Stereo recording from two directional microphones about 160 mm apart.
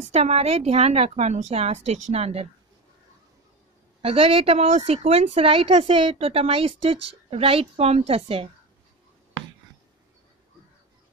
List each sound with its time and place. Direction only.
0.1 s a woman's voice: 40° right (ahead or behind)
4.0 s a woman's voice: 35° right (ahead or behind)